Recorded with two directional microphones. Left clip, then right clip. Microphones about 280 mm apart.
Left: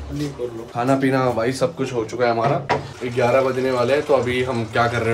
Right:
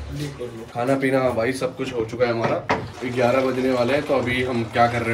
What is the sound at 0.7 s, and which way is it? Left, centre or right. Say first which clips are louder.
Speech: left 1 dB; centre.